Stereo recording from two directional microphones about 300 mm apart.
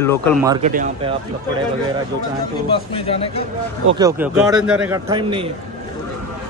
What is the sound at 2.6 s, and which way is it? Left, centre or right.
Speech, centre.